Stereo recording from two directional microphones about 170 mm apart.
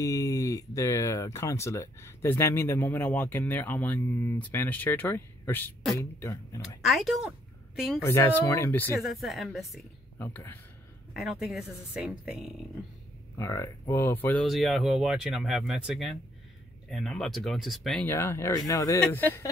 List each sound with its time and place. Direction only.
0.0 s speech: 20° left (ahead or behind)
6.8 s speech: centre (ahead or behind)
8.0 s speech: 15° left (ahead or behind)
9.0 s speech: centre (ahead or behind)
10.1 s speech: 15° left (ahead or behind)
11.1 s speech: centre (ahead or behind)
13.4 s speech: 20° left (ahead or behind)
14.4 s speech: centre (ahead or behind)
18.0 s speech: 15° left (ahead or behind)